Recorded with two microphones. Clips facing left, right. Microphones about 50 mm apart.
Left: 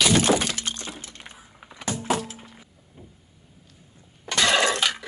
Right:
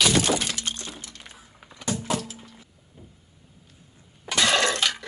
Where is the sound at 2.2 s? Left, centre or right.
Left.